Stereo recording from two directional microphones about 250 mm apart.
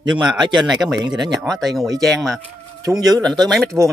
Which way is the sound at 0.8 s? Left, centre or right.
Centre.